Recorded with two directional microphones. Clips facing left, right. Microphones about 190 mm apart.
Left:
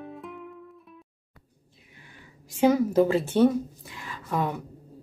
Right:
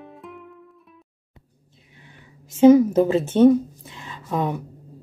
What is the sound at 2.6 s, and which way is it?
Speech, 20° right (ahead or behind).